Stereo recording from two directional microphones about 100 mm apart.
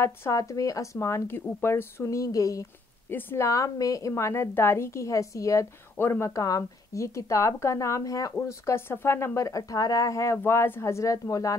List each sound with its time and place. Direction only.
0.0 s a woman's voice: 25° left (ahead or behind)
0.4 s speech: 35° left (ahead or behind)
3.1 s a woman's voice: 20° left (ahead or behind)